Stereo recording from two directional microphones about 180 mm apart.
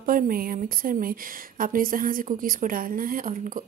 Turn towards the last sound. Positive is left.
turn(degrees=-45)  # may be behind; listen again after turning